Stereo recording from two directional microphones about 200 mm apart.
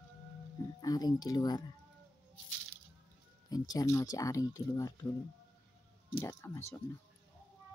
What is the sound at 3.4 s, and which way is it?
Speech, 20° left (ahead or behind).